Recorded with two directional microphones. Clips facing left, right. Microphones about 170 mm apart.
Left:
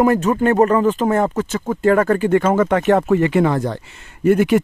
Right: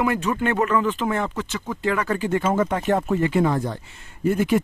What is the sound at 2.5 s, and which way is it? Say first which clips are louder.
Speech: left 4 dB; 80° left.